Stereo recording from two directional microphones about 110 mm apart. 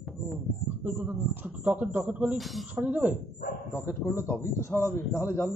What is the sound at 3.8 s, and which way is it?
A man's voice, 25° left (ahead or behind).